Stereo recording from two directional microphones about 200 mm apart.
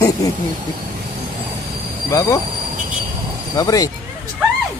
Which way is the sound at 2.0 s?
15° left (ahead or behind).